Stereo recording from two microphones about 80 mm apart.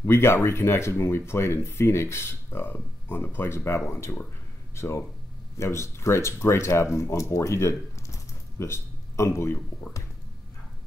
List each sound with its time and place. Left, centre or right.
0.0 s speech: left
8.1 s typing: left